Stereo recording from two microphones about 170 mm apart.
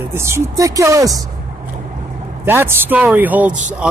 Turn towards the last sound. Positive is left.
turn(degrees=-10)  # may be behind; listen again after turning